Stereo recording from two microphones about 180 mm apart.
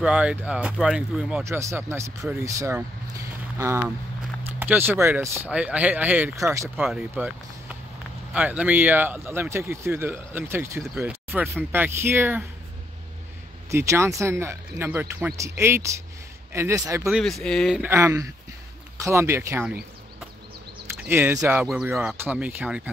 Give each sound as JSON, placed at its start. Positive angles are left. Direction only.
{"t": 0.0, "sound": "speech", "side_deg": -5}
{"t": 1.4, "sound": "speech", "side_deg": -15}
{"t": 13.7, "sound": "speech", "side_deg": -15}
{"t": 17.1, "sound": "speech", "side_deg": 0}
{"t": 17.8, "sound": "speech", "side_deg": -15}
{"t": 21.0, "sound": "speech", "side_deg": -10}